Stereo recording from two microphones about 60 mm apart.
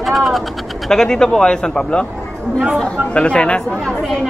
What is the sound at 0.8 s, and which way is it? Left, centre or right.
A man's voice, centre.